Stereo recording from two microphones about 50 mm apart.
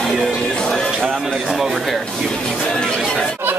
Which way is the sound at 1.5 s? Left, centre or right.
Centre.